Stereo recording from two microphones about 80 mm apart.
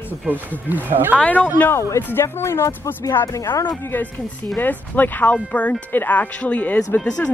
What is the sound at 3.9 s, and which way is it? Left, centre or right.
Speech, left.